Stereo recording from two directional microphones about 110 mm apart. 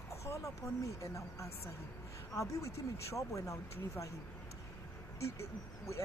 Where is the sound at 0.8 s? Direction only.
30° left (ahead or behind).